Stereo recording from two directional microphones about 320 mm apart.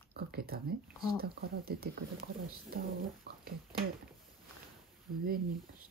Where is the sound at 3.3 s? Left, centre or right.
Right.